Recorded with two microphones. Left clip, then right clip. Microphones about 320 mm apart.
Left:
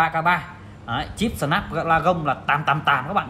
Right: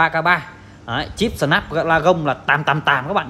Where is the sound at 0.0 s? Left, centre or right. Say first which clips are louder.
Right 4 dB; right.